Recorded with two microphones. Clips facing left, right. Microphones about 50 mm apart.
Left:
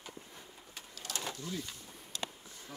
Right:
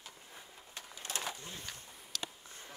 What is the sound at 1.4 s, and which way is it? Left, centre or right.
Speech, right.